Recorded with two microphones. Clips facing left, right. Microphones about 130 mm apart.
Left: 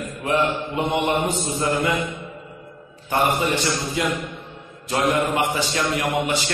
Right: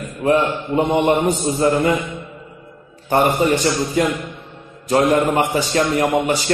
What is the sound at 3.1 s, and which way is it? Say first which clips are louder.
Speech: right 5 dB; 40° right (ahead or behind).